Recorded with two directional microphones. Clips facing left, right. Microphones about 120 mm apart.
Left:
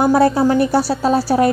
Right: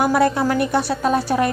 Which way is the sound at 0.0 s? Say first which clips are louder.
Left 4 dB; 30° left (ahead or behind).